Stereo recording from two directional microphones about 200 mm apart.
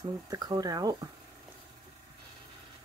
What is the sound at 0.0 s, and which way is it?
Speech, 20° right (ahead or behind).